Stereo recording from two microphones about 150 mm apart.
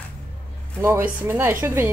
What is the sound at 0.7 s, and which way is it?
Speech, 15° right (ahead or behind).